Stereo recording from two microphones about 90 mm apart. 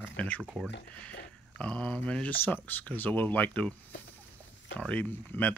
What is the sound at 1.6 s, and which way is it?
Speech, 10° left (ahead or behind).